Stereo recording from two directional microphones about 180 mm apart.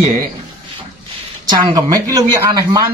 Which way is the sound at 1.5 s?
20° right (ahead or behind).